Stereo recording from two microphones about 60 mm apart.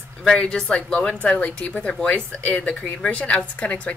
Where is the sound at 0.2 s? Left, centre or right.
Centre.